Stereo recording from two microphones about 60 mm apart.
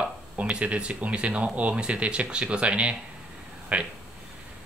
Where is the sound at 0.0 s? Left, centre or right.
Centre.